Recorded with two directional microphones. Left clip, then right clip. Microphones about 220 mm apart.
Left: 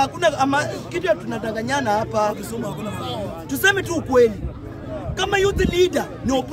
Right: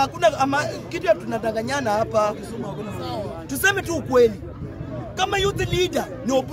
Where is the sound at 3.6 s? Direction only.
5° right (ahead or behind).